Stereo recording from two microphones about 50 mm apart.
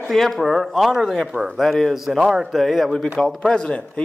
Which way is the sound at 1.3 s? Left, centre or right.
Centre.